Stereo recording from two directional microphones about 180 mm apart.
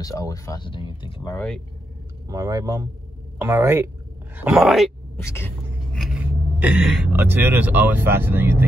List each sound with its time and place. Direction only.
0.0 s speech: 20° left (ahead or behind)
1.3 s speech: 5° left (ahead or behind)
2.2 s speech: 20° right (ahead or behind); by 5.2 s centre (ahead or behind)
5.2 s speech: 15° left (ahead or behind)
5.9 s a sound: 5° right (ahead or behind)
7.1 s speech: 10° right (ahead or behind)